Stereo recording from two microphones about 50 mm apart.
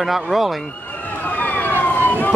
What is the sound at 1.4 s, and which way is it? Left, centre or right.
Emergency vehicle, left.